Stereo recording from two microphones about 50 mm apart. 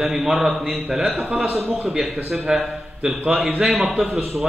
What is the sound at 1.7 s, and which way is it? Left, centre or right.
Speech, centre.